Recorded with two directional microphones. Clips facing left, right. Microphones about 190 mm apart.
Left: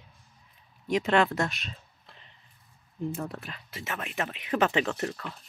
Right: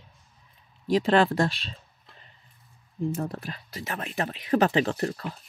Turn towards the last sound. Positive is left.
turn(degrees=-35)  # may be behind; listen again after turning